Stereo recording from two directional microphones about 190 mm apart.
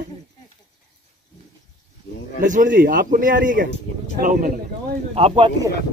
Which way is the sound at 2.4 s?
45° right (ahead or behind).